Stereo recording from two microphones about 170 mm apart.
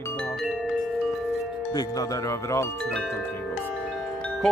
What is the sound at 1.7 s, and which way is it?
Speech, 20° left (ahead or behind).